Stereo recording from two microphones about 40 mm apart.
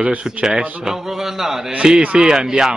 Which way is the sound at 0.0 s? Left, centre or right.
Right.